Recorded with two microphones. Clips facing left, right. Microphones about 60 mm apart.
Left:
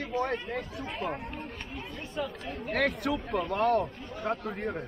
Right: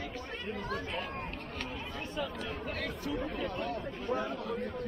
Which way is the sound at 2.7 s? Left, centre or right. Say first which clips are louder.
Left 11 dB; left.